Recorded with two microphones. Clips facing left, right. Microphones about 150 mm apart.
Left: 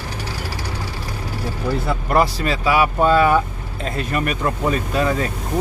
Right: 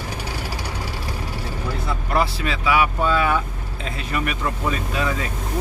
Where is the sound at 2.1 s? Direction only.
40° left (ahead or behind).